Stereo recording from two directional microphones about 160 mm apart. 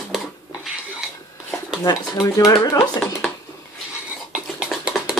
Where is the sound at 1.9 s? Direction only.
20° left (ahead or behind).